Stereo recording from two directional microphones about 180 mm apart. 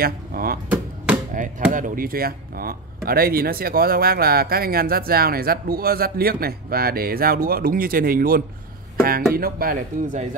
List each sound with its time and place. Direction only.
0.0 s speech: 55° right (ahead or behind)
0.7 s a sound: 5° right (ahead or behind)
1.3 s speech: 45° right (ahead or behind)